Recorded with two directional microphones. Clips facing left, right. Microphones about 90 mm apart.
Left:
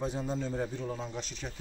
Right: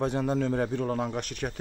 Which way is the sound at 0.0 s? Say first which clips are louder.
Right 7 dB; 65° right (ahead or behind).